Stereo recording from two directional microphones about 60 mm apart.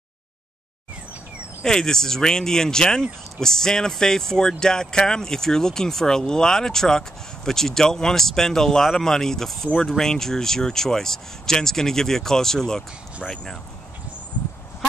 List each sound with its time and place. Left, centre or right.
1.6 s speech: centre